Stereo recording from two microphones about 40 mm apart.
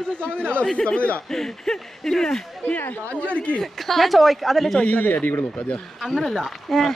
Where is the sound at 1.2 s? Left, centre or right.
Centre.